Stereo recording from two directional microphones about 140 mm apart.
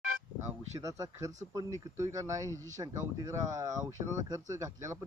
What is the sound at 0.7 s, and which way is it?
Speech, 25° right (ahead or behind).